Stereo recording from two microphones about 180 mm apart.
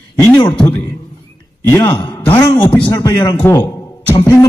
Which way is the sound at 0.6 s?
10° left (ahead or behind).